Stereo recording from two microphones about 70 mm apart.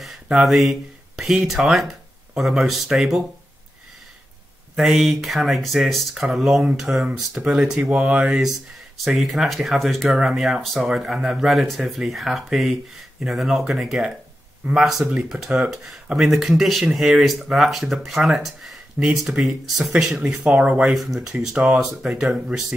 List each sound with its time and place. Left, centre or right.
0.0 s speech: centre
4.7 s speech: centre
20.9 s speech: centre